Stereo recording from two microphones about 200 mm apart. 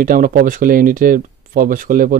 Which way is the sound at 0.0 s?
45° right (ahead or behind).